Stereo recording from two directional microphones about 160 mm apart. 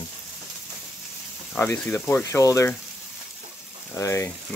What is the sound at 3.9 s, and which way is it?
Speech, 15° left (ahead or behind).